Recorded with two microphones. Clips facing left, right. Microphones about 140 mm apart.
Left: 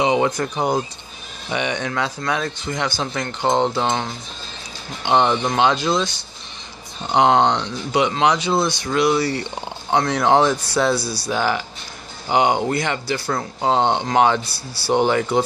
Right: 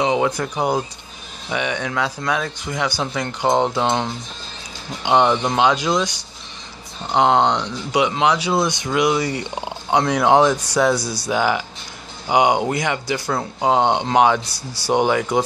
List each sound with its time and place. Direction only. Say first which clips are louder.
0.0 s speech: left 1 dB; centre (ahead or behind)
7.1 s speech: left 1 dB; 5° right (ahead or behind)